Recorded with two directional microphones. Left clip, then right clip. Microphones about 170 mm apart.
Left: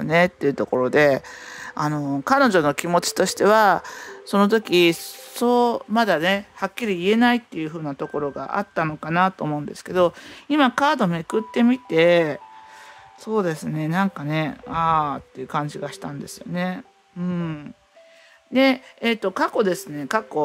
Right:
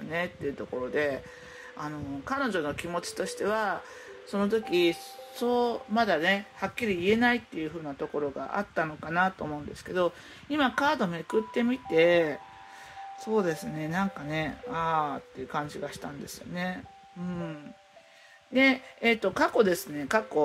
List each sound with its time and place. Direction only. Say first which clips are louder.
0.1 s speech: left 14 dB; 55° left (ahead or behind); by 20.4 s 30° left (ahead or behind)